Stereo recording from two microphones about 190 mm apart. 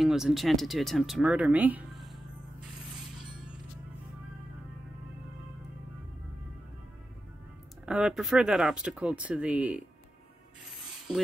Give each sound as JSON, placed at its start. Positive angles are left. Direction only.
{"t": 0.0, "sound": "speech", "side_deg": 0}
{"t": 2.6, "sound": "mechanisms", "side_deg": -5}
{"t": 7.8, "sound": "speech", "side_deg": -5}
{"t": 11.1, "sound": "speech", "side_deg": 0}